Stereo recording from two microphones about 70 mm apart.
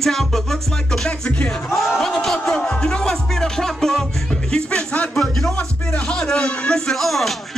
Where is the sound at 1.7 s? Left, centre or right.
Centre.